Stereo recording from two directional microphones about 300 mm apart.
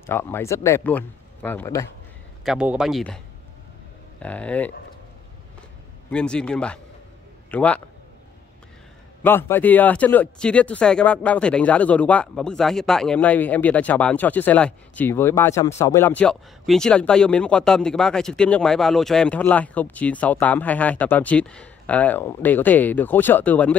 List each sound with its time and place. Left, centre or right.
0.0 s speech: centre
2.4 s speech: centre
4.2 s speech: centre
6.0 s speech: centre
9.2 s speech: centre